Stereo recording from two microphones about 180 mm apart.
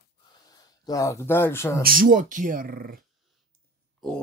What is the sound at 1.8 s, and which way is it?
Speech, 55° right (ahead or behind).